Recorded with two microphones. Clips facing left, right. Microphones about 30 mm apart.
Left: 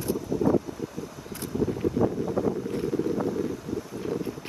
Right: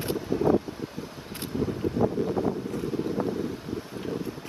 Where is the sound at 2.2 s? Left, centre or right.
Right.